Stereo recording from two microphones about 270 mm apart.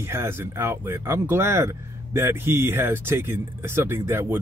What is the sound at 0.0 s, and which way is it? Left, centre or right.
Speech, centre.